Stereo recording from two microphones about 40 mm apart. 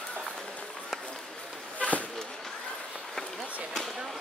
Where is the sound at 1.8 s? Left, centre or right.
Left.